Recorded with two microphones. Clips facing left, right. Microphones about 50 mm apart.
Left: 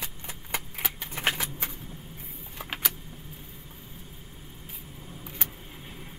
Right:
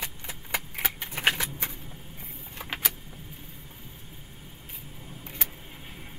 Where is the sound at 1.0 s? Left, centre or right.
Right.